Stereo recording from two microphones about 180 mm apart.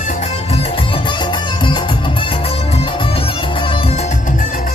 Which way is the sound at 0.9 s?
25° left (ahead or behind).